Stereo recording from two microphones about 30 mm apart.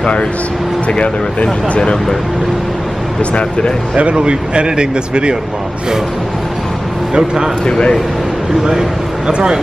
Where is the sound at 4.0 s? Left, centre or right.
Right.